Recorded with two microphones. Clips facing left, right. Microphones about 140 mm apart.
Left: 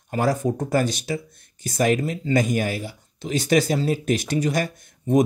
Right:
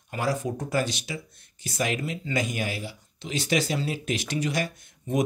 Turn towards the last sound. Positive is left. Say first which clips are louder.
# left 8 dB
turn(degrees=45)  # may be behind; listen again after turning